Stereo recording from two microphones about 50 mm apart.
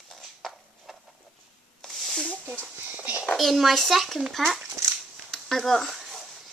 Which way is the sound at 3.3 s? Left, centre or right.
Centre.